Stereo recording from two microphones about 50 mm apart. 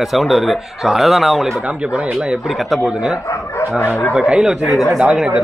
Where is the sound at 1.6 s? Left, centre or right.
Right.